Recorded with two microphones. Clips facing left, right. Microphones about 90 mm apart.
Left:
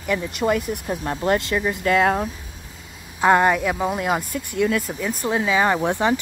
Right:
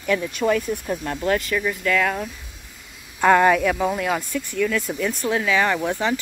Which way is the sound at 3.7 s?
20° left (ahead or behind).